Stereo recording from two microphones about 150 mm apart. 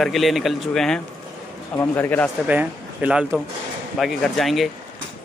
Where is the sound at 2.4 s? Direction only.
10° right (ahead or behind).